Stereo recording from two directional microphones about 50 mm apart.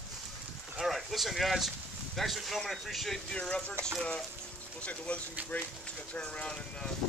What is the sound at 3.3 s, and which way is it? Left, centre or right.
Speech, left.